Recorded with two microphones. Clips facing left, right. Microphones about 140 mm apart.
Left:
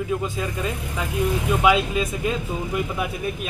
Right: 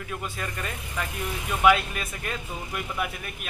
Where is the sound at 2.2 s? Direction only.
20° left (ahead or behind).